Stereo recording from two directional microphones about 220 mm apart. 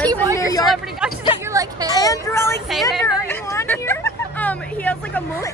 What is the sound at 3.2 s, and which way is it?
Speech, 10° left (ahead or behind).